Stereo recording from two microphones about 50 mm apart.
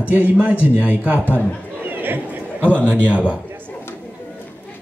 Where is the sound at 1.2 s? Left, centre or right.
Left.